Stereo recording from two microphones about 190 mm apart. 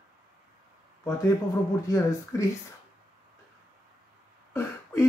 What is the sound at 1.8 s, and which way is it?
Speech, 15° left (ahead or behind).